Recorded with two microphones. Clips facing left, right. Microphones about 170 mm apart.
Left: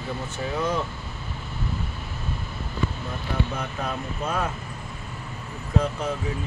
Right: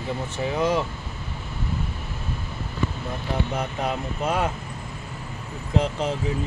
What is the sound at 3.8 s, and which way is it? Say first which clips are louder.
Speech: right 4 dB; 20° right (ahead or behind).